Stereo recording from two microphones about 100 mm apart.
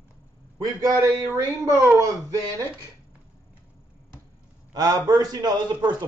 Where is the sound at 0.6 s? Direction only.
35° right (ahead or behind).